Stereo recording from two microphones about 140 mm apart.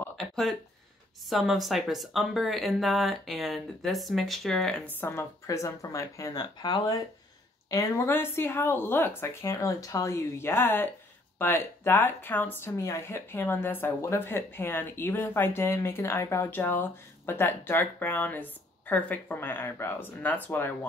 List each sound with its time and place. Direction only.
1.2 s speech: centre (ahead or behind); by 7.0 s 30° left (ahead or behind)
7.7 s speech: 20° left (ahead or behind)